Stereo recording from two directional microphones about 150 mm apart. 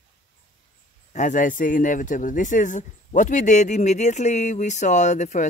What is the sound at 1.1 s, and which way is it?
Speech, 55° left (ahead or behind).